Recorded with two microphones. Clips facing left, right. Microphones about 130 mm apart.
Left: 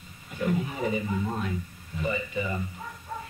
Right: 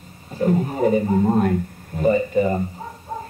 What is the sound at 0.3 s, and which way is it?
A man's voice, 40° right (ahead or behind).